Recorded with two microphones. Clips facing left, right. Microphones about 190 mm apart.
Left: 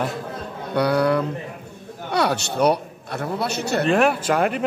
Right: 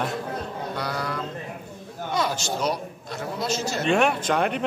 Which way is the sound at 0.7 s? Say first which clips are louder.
Left 14 dB; 65° left (ahead or behind).